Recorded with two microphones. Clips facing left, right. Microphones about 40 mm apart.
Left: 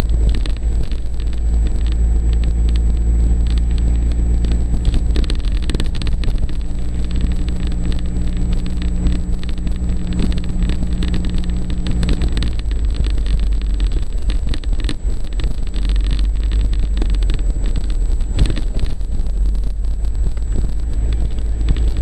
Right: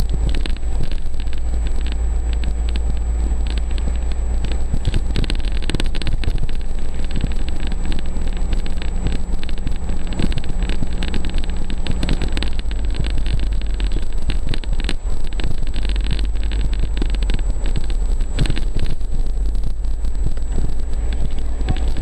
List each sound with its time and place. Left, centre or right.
1.6 s vehicle: centre